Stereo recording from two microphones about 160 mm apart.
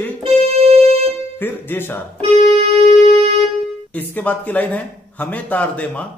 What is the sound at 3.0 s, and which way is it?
Music, 40° right (ahead or behind).